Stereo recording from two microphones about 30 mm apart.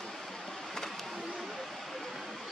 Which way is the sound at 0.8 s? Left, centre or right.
Centre.